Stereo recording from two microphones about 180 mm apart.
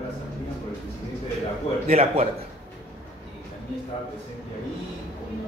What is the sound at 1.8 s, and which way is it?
Speech, 35° right (ahead or behind).